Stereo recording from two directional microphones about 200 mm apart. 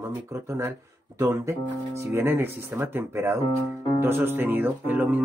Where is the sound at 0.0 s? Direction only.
15° right (ahead or behind).